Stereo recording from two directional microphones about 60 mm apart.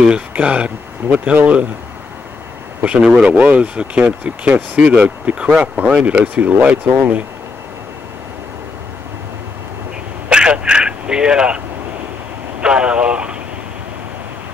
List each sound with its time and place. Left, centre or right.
0.3 s speech: right
2.8 s speech: right
10.3 s speech: centre